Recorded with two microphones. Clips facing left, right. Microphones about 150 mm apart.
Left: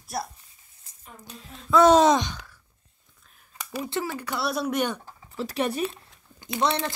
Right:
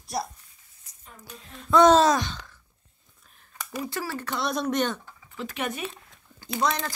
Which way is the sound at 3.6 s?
15° left (ahead or behind).